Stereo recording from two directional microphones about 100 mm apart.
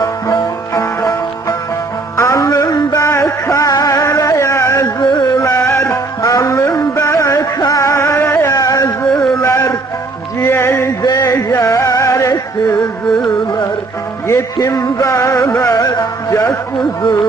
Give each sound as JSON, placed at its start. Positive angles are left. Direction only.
{"t": 0.0, "sound": "sitar", "side_deg": 35}
{"t": 2.1, "sound": "music", "side_deg": 30}
{"t": 4.8, "sound": "music", "side_deg": 40}
{"t": 5.5, "sound": "music", "side_deg": 25}
{"t": 8.5, "sound": "carnatic music", "side_deg": 40}
{"t": 9.0, "sound": "a sound", "side_deg": 5}
{"t": 9.4, "sound": "music", "side_deg": 30}
{"t": 11.0, "sound": "carnatic music", "side_deg": 45}
{"t": 12.0, "sound": "music", "side_deg": 35}
{"t": 14.2, "sound": "music", "side_deg": 30}
{"t": 15.7, "sound": "music", "side_deg": 40}